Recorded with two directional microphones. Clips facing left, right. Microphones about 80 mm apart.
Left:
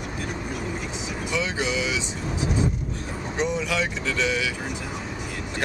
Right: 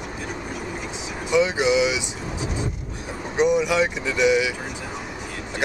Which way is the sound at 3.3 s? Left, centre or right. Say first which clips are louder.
Right 7 dB; centre.